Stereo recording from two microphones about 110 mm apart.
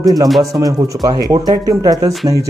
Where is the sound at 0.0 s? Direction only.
35° right (ahead or behind).